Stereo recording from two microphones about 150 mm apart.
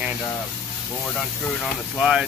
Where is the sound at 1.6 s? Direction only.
5° right (ahead or behind).